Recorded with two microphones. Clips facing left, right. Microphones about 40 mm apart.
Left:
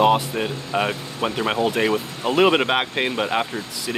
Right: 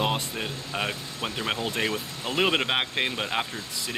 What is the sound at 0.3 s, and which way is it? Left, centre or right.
Speech, centre.